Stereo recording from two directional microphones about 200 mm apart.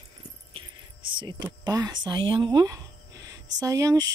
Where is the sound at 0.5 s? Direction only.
25° right (ahead or behind).